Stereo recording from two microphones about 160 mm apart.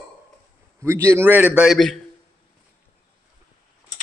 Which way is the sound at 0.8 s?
15° right (ahead or behind).